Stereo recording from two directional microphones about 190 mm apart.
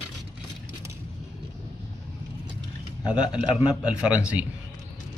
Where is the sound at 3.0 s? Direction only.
5° right (ahead or behind).